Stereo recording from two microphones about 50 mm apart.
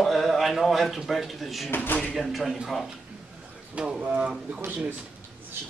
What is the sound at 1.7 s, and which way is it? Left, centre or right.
Speech, left.